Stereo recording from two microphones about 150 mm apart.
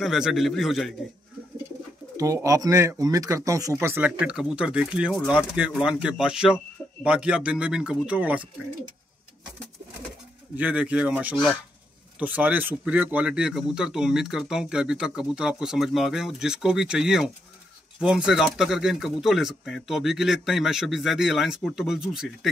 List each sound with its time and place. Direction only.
0.0 s speech: centre (ahead or behind)
2.1 s speech: 20° right (ahead or behind)
10.5 s speech: 10° right (ahead or behind)